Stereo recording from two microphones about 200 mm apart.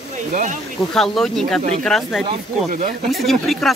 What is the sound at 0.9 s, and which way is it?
Speech, centre (ahead or behind).